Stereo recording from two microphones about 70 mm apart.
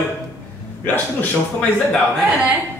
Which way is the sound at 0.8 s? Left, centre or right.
Left.